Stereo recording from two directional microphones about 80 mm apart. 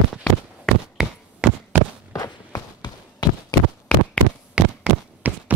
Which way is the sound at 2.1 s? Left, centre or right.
Left.